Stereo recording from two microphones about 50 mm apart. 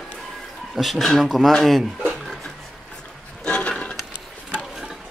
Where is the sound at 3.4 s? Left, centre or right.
Centre.